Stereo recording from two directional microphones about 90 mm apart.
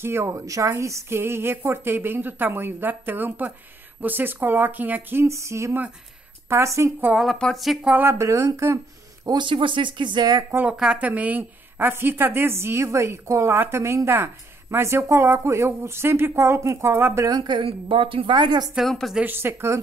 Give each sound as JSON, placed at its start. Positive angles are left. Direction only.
{"t": 0.0, "sound": "a woman's voice", "side_deg": -30}
{"t": 5.2, "sound": "speech", "side_deg": -30}
{"t": 7.3, "sound": "a woman's voice", "side_deg": 10}
{"t": 7.9, "sound": "speech", "side_deg": -25}
{"t": 9.2, "sound": "a woman's voice", "side_deg": -55}
{"t": 10.5, "sound": "a woman's voice", "side_deg": -20}
{"t": 17.4, "sound": "a woman's voice", "side_deg": -60}
{"t": 18.9, "sound": "a woman's voice", "side_deg": 5}
{"t": 19.2, "sound": "a woman's voice", "side_deg": -25}